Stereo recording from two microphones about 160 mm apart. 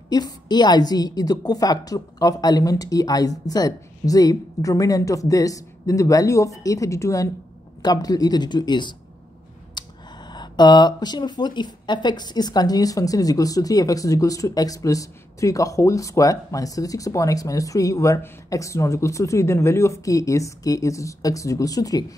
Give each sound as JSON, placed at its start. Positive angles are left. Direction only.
{"t": 0.1, "sound": "speech", "side_deg": 25}